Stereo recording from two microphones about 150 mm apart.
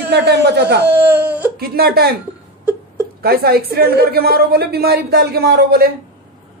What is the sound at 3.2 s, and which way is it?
A woman's voice, 90° right.